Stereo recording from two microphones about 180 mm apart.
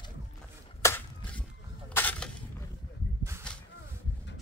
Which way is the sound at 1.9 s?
10° left (ahead or behind).